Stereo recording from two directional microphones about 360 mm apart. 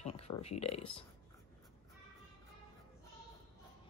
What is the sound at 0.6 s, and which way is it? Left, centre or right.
Speech, centre.